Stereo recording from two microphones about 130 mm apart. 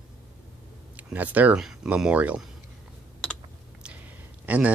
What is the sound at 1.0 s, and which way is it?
Speech, 10° right (ahead or behind).